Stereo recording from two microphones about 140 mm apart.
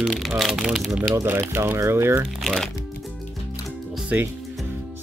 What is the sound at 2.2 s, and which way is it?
Speech, 5° left (ahead or behind).